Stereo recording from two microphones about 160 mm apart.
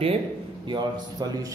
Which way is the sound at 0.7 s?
25° right (ahead or behind).